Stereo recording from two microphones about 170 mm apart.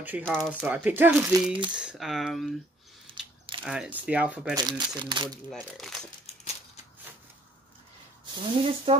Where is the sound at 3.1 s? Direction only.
30° right (ahead or behind).